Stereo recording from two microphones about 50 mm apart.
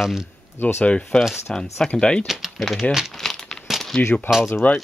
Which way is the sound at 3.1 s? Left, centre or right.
Centre.